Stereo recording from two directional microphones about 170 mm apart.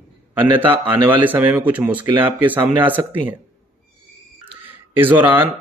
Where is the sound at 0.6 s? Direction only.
10° right (ahead or behind).